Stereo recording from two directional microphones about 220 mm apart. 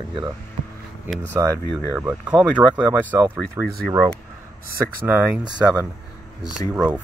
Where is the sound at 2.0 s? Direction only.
5° right (ahead or behind).